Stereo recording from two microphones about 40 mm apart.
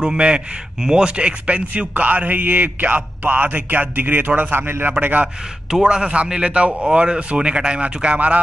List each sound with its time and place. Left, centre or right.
0.0 s speech: right
4.4 s a man's voice: right
5.0 s speech: right
5.7 s speech: centre; by 8.4 s right